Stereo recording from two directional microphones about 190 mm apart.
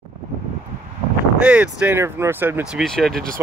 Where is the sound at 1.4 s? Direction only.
5° right (ahead or behind).